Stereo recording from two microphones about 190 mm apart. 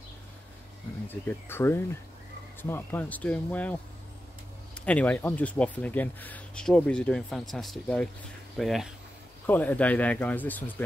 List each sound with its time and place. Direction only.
1.0 s speech: 10° left (ahead or behind)
4.7 s speech: 5° left (ahead or behind)